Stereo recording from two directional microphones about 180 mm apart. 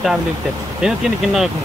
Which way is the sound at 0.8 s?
Centre (ahead or behind).